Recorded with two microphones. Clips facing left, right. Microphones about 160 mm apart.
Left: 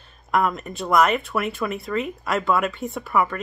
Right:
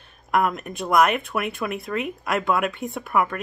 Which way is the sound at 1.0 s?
60° right (ahead or behind).